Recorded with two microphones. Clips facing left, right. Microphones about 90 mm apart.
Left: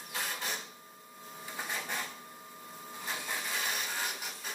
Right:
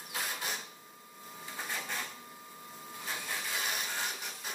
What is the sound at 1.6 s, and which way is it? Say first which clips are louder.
Printer: left 1 dB; 15° left (ahead or behind).